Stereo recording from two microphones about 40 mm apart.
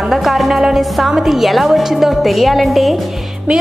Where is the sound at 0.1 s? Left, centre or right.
Centre.